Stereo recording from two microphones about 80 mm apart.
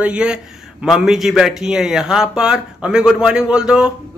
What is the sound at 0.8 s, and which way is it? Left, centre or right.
A man's voice, centre.